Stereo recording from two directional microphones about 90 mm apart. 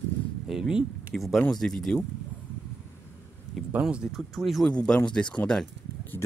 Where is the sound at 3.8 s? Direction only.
5° right (ahead or behind).